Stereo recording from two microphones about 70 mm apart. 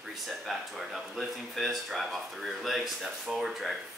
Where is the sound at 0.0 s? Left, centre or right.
Centre.